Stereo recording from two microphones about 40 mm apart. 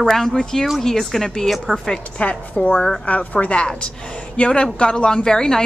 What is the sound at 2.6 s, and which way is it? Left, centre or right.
Speech, left.